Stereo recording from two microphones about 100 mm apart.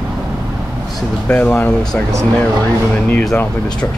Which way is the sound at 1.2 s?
15° left (ahead or behind).